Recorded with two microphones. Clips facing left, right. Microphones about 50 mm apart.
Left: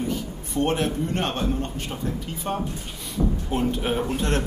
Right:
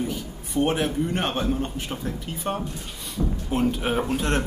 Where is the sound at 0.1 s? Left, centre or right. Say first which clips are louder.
Left 1 dB; centre.